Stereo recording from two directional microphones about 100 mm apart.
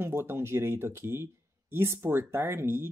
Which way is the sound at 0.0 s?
25° right (ahead or behind).